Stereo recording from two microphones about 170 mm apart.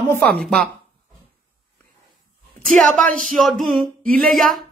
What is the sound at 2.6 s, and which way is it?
Speech, 5° left (ahead or behind).